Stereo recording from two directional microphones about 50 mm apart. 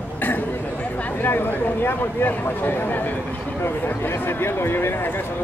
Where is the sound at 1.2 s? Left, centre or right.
Left.